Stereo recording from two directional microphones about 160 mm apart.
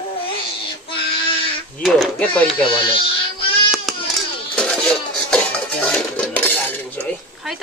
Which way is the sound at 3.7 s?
Centre (ahead or behind).